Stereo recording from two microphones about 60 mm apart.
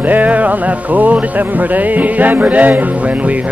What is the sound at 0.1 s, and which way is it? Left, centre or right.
Music, right.